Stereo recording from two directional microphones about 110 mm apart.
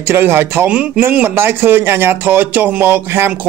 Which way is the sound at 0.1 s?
20° right (ahead or behind).